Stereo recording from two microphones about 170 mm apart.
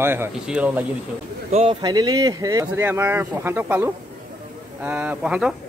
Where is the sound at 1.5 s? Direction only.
40° right (ahead or behind).